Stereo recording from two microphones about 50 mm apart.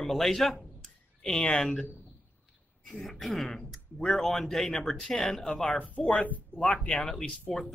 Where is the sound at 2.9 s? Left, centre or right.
Centre.